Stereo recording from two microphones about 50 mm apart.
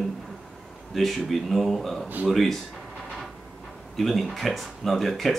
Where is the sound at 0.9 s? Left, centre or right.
Centre.